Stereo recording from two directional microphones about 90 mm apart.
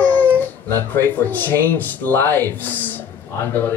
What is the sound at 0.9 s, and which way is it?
Speech, 25° left (ahead or behind).